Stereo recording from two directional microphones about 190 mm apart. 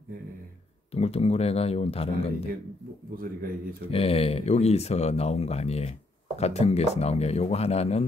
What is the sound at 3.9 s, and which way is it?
Speech, 30° left (ahead or behind).